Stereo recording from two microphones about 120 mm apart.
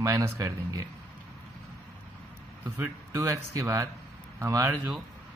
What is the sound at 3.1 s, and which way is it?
Speech, 25° right (ahead or behind).